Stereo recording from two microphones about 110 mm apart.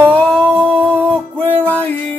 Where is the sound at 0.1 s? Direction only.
15° left (ahead or behind).